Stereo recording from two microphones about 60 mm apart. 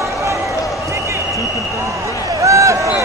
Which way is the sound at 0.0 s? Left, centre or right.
Right.